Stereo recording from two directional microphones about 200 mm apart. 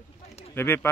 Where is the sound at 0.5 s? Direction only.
10° left (ahead or behind).